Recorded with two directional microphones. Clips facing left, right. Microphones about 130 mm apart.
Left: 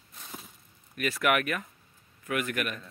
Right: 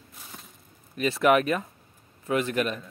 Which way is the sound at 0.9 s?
25° right (ahead or behind).